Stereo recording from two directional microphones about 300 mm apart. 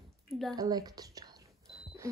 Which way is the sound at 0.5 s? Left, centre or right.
Centre.